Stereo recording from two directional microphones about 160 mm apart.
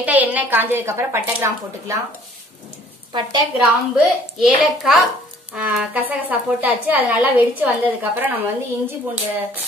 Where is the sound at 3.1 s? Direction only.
30° right (ahead or behind).